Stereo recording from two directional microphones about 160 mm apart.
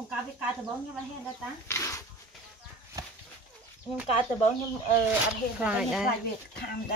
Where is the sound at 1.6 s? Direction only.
15° left (ahead or behind).